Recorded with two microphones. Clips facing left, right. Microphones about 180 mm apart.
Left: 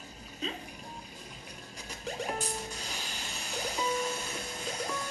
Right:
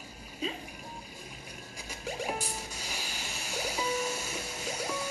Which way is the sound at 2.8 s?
5° right (ahead or behind).